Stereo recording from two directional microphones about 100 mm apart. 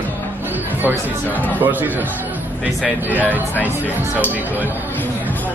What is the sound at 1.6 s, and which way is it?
Speech, 20° right (ahead or behind).